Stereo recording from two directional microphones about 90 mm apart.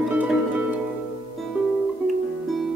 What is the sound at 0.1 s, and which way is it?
Music, 15° right (ahead or behind).